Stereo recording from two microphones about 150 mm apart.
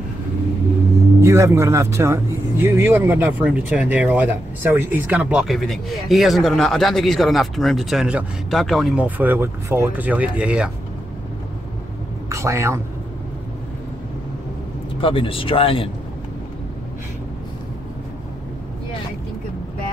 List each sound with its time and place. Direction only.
1.2 s speech: 20° right (ahead or behind)
12.3 s speech: 20° right (ahead or behind)
15.0 s speech: 35° left (ahead or behind)